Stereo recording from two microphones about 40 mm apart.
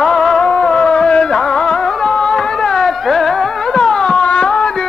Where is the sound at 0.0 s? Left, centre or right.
Centre.